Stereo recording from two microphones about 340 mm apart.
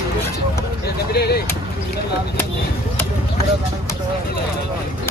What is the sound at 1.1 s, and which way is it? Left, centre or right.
Vehicle, left.